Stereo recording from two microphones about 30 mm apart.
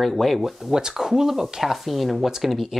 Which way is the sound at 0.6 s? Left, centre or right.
Right.